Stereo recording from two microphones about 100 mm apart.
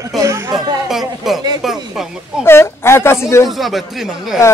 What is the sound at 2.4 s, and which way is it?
Speech, 25° left (ahead or behind).